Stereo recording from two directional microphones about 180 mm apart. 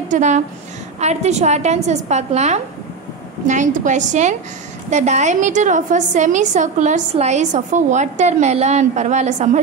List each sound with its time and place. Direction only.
0.1 s a woman's voice: 40° right (ahead or behind)